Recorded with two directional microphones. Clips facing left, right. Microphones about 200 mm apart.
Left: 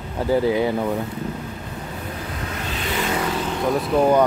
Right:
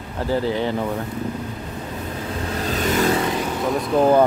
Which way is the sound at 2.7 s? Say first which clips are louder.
Right 6 dB; 45° right (ahead or behind).